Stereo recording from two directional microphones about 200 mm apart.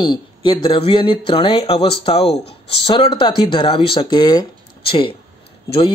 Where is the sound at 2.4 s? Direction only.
55° left (ahead or behind).